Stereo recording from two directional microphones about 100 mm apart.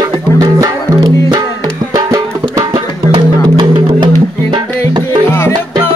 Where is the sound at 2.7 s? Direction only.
60° right (ahead or behind).